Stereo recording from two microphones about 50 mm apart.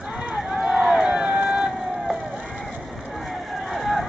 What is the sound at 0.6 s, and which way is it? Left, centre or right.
Run, centre.